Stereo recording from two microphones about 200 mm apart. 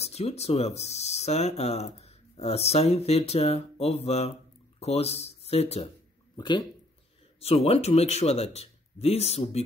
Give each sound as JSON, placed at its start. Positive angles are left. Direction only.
{"t": 0.0, "sound": "speech", "side_deg": 30}